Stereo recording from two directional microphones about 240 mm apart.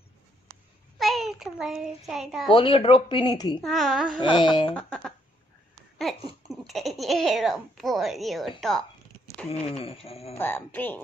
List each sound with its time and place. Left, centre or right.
0.9 s a child's voice: centre
2.5 s speech: left
3.6 s speech: centre
4.2 s speech: centre
4.7 s speech: centre
9.5 s speech: left
10.3 s speech: centre